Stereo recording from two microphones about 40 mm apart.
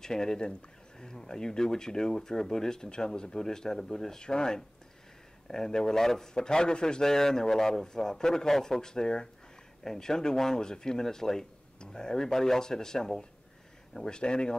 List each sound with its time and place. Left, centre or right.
0.0 s speech: centre